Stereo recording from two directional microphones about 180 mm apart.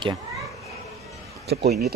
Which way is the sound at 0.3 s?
Centre (ahead or behind).